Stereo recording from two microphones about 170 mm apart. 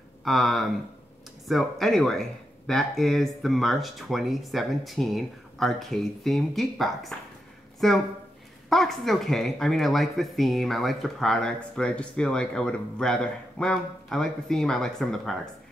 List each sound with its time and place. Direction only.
0.2 s speech: centre (ahead or behind)